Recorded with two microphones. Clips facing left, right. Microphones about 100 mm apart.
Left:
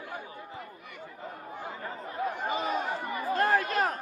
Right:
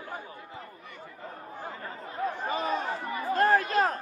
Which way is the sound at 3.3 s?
35° right (ahead or behind).